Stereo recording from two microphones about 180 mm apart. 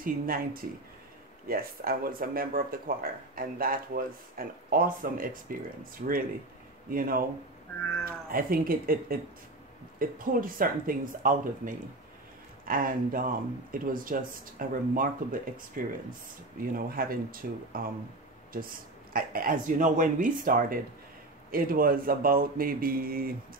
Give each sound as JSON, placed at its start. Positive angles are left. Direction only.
{"t": 0.0, "sound": "speech", "side_deg": -55}
{"t": 19.1, "sound": "speech", "side_deg": -50}